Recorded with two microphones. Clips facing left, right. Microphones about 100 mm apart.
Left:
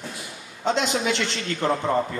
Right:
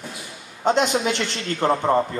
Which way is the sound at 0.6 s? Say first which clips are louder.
Right 4 dB; 45° right (ahead or behind).